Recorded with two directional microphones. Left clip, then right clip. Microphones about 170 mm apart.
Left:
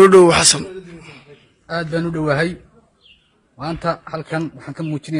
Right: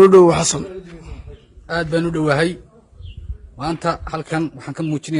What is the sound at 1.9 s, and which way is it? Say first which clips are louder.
Speech: right 1 dB; 45° right (ahead or behind).